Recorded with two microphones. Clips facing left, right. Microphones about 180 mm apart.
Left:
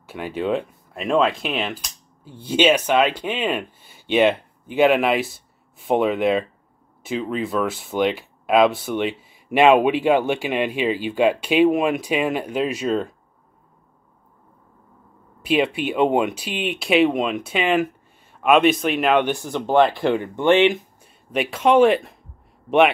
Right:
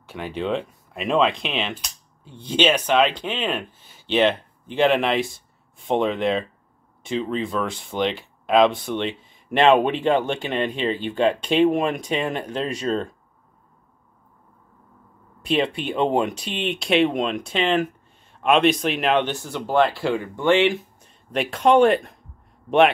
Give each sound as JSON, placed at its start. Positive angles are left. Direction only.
{"t": 0.0, "sound": "speech", "side_deg": 10}
{"t": 15.4, "sound": "speech", "side_deg": 5}
{"t": 19.2, "sound": "speech", "side_deg": 15}
{"t": 21.3, "sound": "speech", "side_deg": 0}